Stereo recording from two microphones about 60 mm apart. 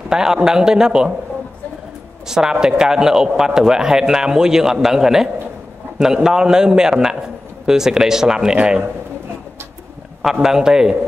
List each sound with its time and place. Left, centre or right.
0.1 s speech: centre
2.2 s speech: centre
10.4 s speech: centre